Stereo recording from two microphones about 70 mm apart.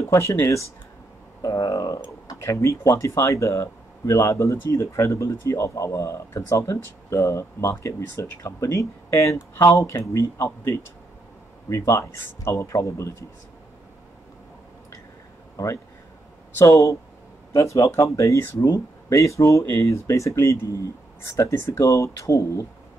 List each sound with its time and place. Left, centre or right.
0.1 s speech: left
1.4 s speech: left
2.4 s speech: left
11.7 s speech: left
15.5 s speech: left